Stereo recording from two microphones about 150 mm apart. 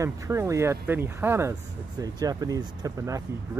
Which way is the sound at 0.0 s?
20° right (ahead or behind).